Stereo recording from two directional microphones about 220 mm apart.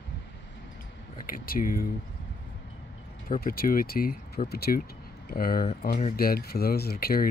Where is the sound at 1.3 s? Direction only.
40° left (ahead or behind).